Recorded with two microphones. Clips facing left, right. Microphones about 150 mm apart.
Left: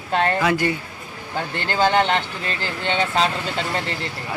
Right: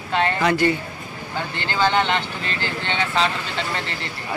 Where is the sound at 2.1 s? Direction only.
45° left (ahead or behind).